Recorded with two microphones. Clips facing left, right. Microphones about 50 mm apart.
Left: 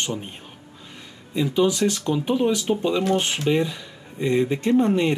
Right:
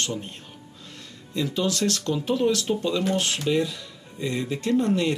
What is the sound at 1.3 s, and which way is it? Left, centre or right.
Speech, centre.